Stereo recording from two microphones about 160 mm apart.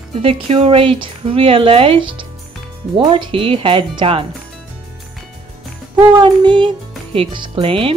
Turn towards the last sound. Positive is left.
turn(degrees=-35)  # may be behind; listen again after turning